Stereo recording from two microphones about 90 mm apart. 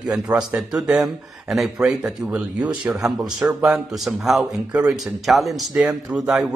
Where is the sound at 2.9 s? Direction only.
Centre (ahead or behind).